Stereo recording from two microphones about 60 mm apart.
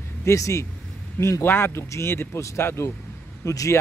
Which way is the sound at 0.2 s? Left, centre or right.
Left.